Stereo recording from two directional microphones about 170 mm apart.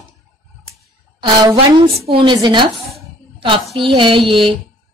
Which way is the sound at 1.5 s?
30° right (ahead or behind).